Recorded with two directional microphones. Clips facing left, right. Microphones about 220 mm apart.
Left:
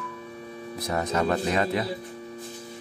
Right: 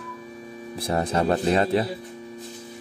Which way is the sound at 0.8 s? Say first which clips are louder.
Right 3 dB; 30° right (ahead or behind).